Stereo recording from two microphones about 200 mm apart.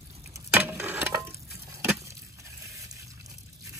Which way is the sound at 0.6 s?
10° right (ahead or behind).